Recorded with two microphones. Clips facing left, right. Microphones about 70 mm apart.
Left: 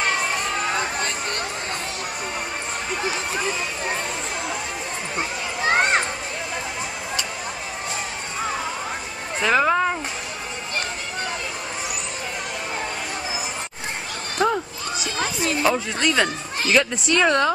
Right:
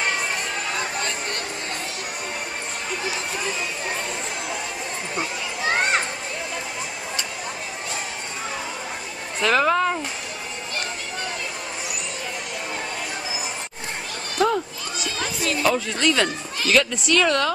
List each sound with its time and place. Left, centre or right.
5.1 s children playing: left
9.4 s speech: centre
14.4 s a sound: left
15.6 s speech: centre